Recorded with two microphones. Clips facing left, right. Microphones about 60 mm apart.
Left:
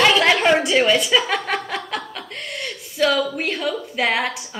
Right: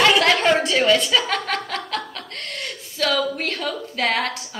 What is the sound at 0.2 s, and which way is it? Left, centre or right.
Chuckle, centre.